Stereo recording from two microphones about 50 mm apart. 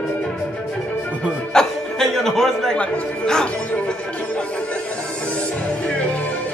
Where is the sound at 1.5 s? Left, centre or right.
Centre.